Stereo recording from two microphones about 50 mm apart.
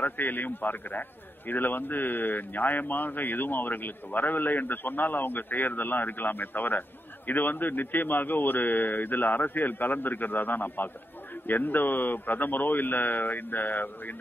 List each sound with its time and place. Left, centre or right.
0.0 s a man's voice: left